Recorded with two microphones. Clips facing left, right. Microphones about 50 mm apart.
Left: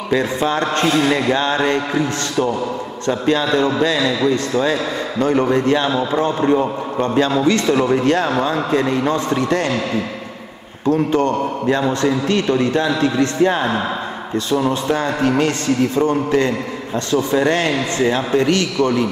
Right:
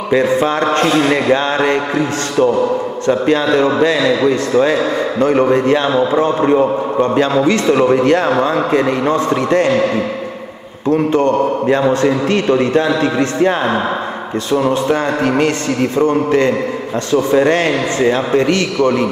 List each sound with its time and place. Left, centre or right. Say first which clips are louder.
0.1 s a man's voice: right 5 dB; right
10.9 s a man's voice: right 3 dB; right